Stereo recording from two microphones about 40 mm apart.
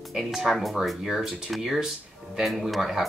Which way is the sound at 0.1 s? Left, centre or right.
Centre.